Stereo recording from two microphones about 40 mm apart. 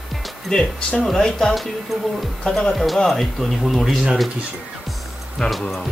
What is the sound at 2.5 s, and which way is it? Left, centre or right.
Speech, centre.